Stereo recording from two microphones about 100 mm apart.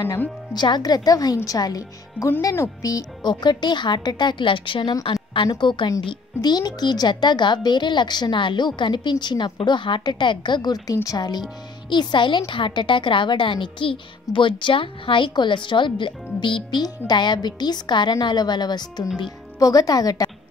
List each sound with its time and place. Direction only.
0.5 s a woman's voice: 45° left (ahead or behind)